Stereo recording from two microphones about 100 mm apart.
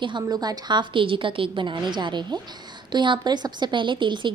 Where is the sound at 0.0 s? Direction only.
45° right (ahead or behind).